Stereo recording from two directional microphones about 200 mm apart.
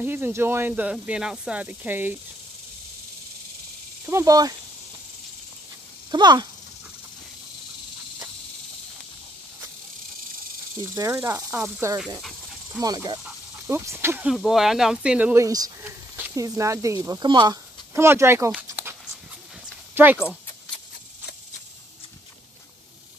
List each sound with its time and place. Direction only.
0.0 s speech: 10° right (ahead or behind)
4.0 s speech: 15° right (ahead or behind)
6.1 s speech: 20° right (ahead or behind)
10.8 s speech: 15° right (ahead or behind)
12.2 s dog: centre (ahead or behind)
12.8 s speech: 20° right (ahead or behind)